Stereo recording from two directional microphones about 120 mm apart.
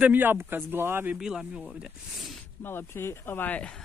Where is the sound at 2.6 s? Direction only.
20° left (ahead or behind).